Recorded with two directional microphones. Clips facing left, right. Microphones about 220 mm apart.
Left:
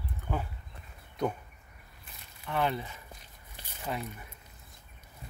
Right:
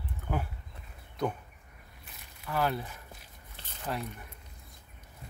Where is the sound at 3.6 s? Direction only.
10° left (ahead or behind).